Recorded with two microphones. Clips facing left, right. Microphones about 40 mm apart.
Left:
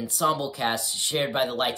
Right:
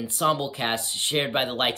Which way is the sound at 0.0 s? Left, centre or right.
Right.